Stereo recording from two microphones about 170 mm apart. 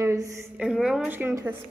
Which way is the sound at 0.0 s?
20° right (ahead or behind).